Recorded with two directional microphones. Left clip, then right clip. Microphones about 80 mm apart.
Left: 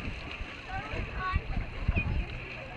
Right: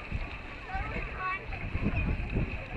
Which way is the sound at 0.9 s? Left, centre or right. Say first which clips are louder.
Even; left.